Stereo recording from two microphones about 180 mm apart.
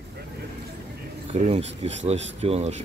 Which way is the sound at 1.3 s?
35° right (ahead or behind).